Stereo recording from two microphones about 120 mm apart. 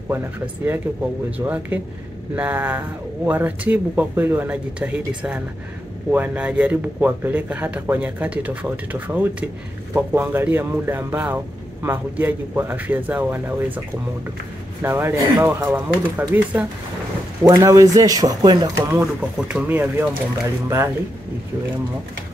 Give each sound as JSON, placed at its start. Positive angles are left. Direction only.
{"t": 1.4, "sound": "speech", "side_deg": -15}
{"t": 14.8, "sound": "speech", "side_deg": -20}
{"t": 17.4, "sound": "speech", "side_deg": -25}
{"t": 18.8, "sound": "speech", "side_deg": -25}
{"t": 19.3, "sound": "speech", "side_deg": -10}